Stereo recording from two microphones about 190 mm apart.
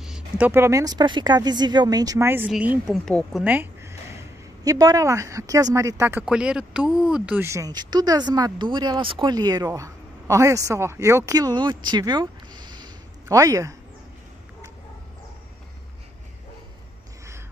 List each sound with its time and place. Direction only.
0.0 s speech: 5° right (ahead or behind)
3.4 s a sound: 10° right (ahead or behind)
4.6 s speech: 20° right (ahead or behind)